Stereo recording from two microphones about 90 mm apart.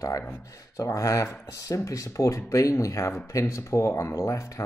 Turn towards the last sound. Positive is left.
turn(degrees=35)  # may be behind; listen again after turning